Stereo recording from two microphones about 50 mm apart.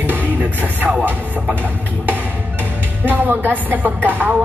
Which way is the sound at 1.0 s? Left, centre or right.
Right.